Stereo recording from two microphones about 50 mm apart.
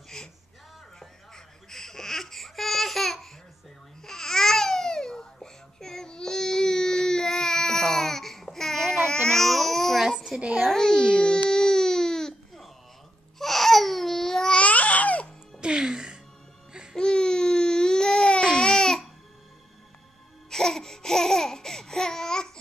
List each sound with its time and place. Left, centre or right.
0.1 s a sound: centre
0.9 s baby cry: centre
4.0 s babbling: centre
9.1 s baby cry: centre
10.1 s a sound: centre
10.7 s baby cry: centre
13.4 s a sound: centre
14.6 s babbling: left
15.6 s music: centre
16.9 s baby cry: centre
18.6 s babbling: centre
20.4 s laughter: centre